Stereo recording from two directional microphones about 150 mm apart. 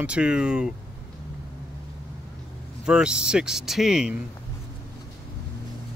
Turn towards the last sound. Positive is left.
turn(degrees=-5)  # may be behind; listen again after turning